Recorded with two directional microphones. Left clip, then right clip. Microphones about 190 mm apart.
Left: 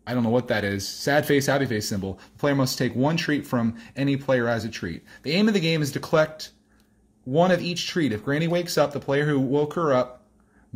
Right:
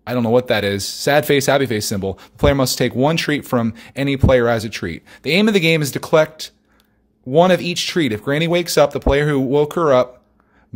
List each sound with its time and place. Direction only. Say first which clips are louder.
0.0 s speech: right 8 dB; 35° right (ahead or behind)